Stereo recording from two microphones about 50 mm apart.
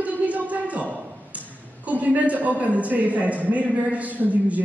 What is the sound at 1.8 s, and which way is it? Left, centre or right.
A man's voice, right.